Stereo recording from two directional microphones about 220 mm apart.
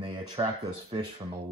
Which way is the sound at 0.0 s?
25° right (ahead or behind).